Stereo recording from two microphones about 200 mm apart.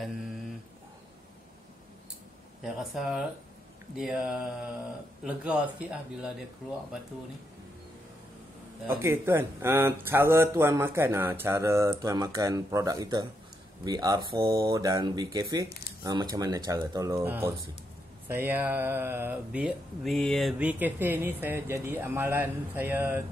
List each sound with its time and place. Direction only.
2.6 s a man's voice: centre (ahead or behind)
8.8 s speech: 10° right (ahead or behind)